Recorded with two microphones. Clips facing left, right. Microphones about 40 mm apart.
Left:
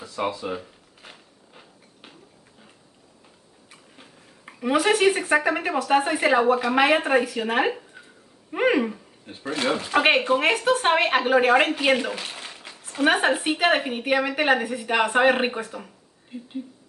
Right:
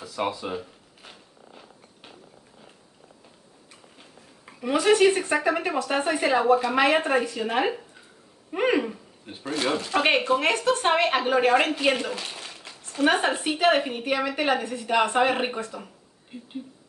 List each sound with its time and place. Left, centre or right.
0.5 s zipper: centre
4.0 s a sound: centre
5.3 s a woman's voice: left